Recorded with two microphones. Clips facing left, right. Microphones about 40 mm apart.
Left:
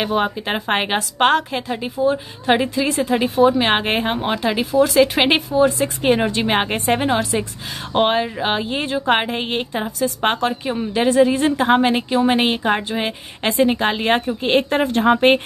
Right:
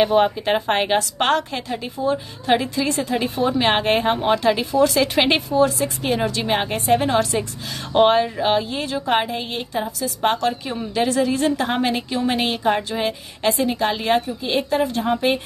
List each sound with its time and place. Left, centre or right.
0.0 s a woman's voice: centre
5.8 s speech: left
7.1 s a woman's voice: centre; by 10.4 s left
10.4 s a woman's voice: left